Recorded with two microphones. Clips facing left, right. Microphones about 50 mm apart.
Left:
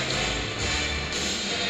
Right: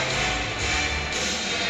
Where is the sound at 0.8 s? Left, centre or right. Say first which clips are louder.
Right 3 dB; centre.